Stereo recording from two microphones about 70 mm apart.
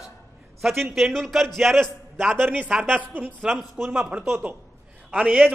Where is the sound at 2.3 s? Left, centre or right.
Right.